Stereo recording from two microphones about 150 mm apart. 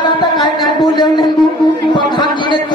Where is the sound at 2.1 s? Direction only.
30° left (ahead or behind).